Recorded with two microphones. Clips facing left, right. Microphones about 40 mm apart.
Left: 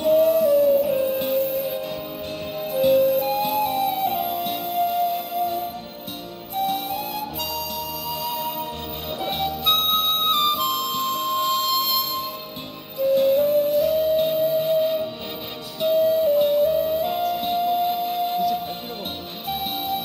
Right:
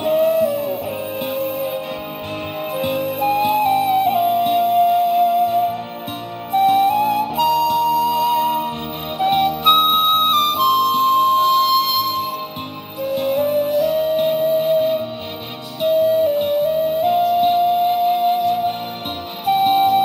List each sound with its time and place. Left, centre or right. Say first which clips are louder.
0.0 s music: right 1 dB; right
2.7 s music: left 5 dB; right
5.5 s music: right 10 dB; right
6.5 s flute: right 11 dB; right
8.3 s music: right 10 dB; right
9.2 s flute: right 10 dB; right
10.5 s music: right 8 dB; right
11.1 s music: right 8 dB; right
13.0 s music: left 1 dB; right
16.1 s music: right 2 dB; right